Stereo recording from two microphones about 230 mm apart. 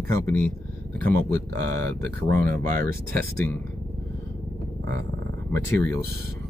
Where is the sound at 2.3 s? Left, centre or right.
Right.